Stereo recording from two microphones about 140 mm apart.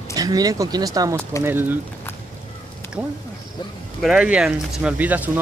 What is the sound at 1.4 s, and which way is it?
Speech, 15° right (ahead or behind).